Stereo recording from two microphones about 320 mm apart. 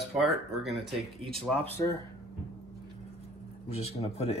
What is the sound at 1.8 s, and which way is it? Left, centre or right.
Speech, centre.